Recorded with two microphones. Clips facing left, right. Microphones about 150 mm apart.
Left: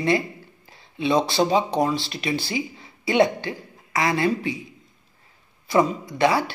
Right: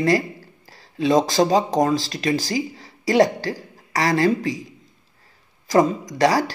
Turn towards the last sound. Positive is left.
turn(degrees=-40)  # may be behind; listen again after turning